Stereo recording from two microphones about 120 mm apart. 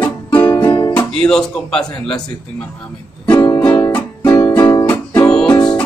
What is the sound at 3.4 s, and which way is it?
Music, 30° left (ahead or behind).